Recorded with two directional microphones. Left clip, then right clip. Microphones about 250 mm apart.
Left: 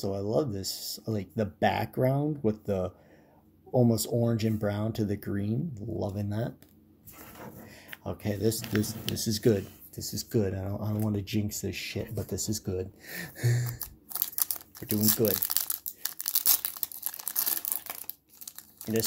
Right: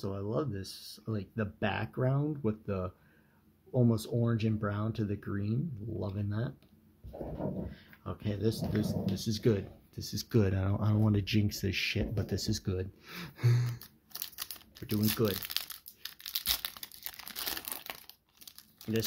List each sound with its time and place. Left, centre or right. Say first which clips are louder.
0.0 s speech: left 7 dB; centre
7.7 s speech: left 6 dB; centre
9.9 s speech: left 2 dB; centre
15.0 s crumpling: left 4 dB; centre
16.5 s tearing: left 2 dB; centre
18.4 s crumpling: left 5 dB; centre